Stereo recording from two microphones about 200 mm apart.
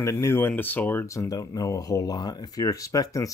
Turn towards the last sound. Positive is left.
turn(degrees=15)  # may be behind; listen again after turning